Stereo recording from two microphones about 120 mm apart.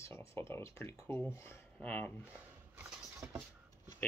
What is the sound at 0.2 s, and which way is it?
Speech, 20° left (ahead or behind).